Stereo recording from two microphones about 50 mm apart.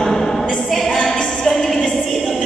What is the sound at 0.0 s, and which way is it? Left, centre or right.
A capella, centre.